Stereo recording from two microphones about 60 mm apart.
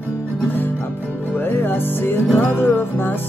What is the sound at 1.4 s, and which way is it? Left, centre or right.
Music, left.